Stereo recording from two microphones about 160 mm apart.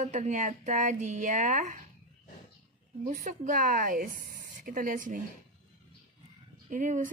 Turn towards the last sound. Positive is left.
turn(degrees=-55)  # may be behind; listen again after turning